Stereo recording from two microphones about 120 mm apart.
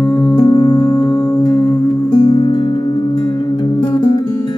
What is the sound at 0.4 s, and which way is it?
Music, 45° left (ahead or behind).